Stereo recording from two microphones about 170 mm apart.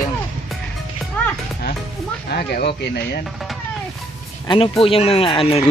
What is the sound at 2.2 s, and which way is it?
Speech, 70° left (ahead or behind).